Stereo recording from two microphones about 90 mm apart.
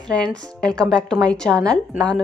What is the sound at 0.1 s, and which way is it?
A woman's voice, 10° left (ahead or behind).